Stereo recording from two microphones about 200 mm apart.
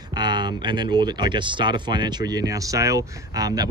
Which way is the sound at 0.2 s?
20° right (ahead or behind).